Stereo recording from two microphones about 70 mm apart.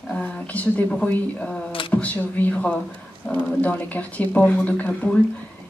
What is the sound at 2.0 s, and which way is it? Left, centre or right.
Speech, left.